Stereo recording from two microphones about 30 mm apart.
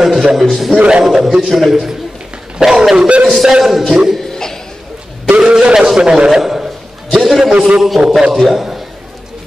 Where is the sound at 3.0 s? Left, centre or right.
Right.